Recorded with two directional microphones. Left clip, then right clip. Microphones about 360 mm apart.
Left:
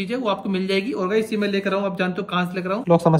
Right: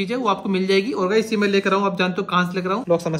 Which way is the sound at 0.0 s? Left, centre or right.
Centre.